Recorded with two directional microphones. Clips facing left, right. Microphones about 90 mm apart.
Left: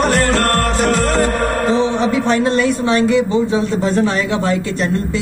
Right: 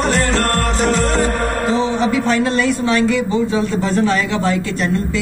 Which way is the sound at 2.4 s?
30° left (ahead or behind).